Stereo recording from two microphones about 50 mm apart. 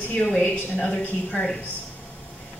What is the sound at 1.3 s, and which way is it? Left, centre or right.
Speech, centre.